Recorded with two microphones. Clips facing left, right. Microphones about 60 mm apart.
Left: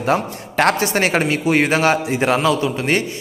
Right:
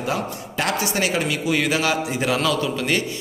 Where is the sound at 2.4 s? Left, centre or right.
Left.